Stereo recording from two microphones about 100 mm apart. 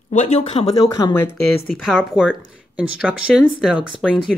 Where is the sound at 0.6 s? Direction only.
90° left.